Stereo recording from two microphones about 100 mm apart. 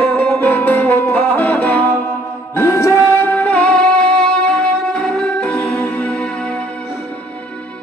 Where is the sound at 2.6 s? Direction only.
30° left (ahead or behind); by 6.6 s 10° left (ahead or behind).